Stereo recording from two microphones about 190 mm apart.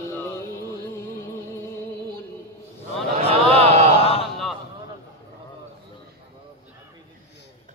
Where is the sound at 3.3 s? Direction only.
30° right (ahead or behind).